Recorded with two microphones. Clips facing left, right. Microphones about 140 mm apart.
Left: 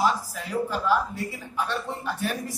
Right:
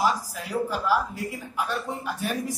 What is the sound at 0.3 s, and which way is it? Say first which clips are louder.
Speech: even; 10° right (ahead or behind).